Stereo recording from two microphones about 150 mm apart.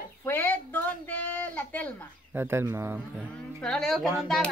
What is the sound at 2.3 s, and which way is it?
Speech, 15° right (ahead or behind).